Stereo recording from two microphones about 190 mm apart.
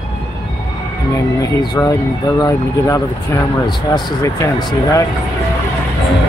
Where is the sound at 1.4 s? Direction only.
20° left (ahead or behind).